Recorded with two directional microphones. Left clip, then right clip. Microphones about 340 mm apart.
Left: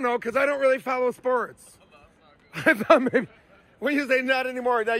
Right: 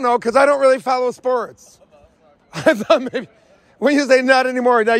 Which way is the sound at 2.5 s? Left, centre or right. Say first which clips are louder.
Right 4 dB; centre.